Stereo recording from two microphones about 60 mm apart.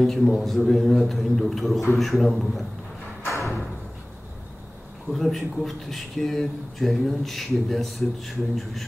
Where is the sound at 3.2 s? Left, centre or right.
Left.